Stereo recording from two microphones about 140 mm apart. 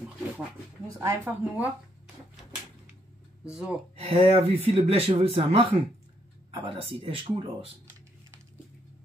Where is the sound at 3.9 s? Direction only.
45° right (ahead or behind).